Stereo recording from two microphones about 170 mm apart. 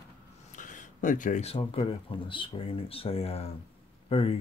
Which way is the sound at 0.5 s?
50° left (ahead or behind).